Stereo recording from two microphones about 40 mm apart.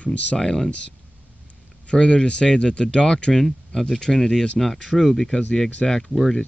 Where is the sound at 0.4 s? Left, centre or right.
Centre.